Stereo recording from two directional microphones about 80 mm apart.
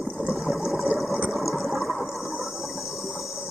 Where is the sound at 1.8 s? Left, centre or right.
Centre.